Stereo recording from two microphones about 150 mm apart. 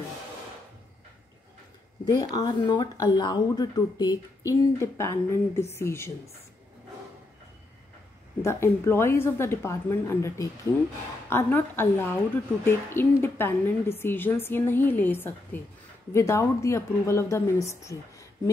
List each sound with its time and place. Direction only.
2.0 s speech: 25° left (ahead or behind)
8.4 s a woman's voice: 20° left (ahead or behind)